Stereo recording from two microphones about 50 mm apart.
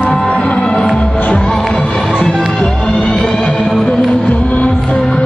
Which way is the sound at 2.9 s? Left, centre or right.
Left.